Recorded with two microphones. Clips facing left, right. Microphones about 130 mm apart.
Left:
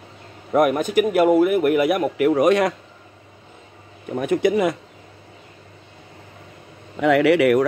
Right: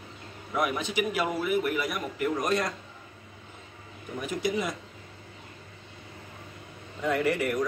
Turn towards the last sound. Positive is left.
turn(degrees=80)